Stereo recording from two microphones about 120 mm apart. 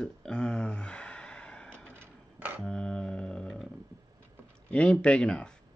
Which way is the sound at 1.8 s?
20° right (ahead or behind).